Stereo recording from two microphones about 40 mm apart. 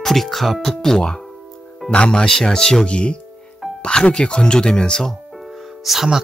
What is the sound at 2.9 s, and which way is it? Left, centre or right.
Speech, left.